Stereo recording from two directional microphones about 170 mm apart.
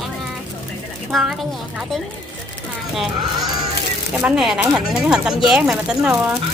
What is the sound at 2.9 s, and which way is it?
Speech, centre (ahead or behind).